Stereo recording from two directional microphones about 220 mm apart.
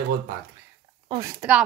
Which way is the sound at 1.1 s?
15° right (ahead or behind).